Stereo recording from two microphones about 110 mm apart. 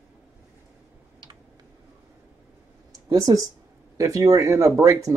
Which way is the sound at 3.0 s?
35° right (ahead or behind).